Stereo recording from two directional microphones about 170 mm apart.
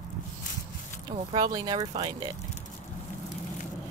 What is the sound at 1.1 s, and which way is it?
Speech, 25° right (ahead or behind).